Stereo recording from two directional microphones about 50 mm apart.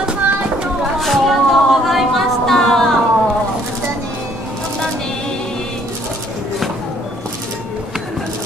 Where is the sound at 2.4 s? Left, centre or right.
Centre.